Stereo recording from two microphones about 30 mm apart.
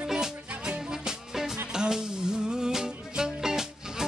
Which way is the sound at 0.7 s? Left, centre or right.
Right.